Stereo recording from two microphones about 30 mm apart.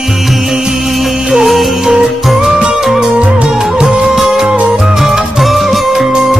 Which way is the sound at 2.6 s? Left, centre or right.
Right.